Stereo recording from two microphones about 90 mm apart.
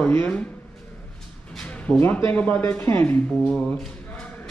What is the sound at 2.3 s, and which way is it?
Speech, 20° left (ahead or behind).